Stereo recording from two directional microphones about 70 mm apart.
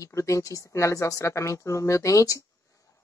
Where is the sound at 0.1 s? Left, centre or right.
Left.